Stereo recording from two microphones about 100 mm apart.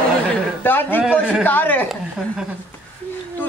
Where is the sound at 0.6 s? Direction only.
20° left (ahead or behind).